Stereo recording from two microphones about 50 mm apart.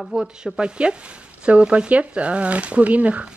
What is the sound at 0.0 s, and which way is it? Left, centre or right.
Speech, centre.